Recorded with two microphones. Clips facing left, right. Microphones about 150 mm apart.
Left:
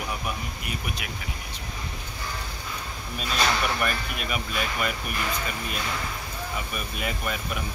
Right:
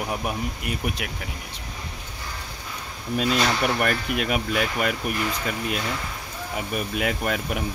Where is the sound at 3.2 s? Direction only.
80° right.